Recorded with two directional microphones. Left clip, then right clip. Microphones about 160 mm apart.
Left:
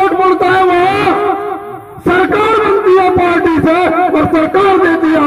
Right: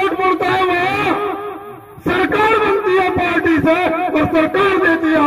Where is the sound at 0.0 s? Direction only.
30° right (ahead or behind).